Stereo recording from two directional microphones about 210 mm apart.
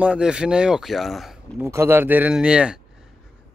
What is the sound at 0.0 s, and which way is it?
Speech, 5° right (ahead or behind).